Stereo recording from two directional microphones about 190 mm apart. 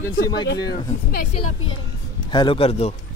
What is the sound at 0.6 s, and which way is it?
Speech, 20° left (ahead or behind).